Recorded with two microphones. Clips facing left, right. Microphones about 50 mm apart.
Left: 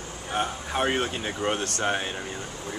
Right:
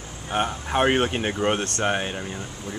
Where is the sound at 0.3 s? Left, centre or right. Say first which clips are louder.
Right 4 dB; right.